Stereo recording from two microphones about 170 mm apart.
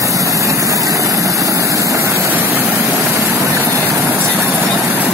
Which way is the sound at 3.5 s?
15° right (ahead or behind).